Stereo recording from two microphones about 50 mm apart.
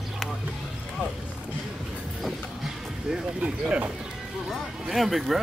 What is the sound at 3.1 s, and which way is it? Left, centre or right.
Speech, centre.